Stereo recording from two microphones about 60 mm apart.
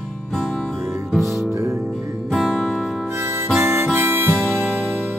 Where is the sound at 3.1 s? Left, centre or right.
Right.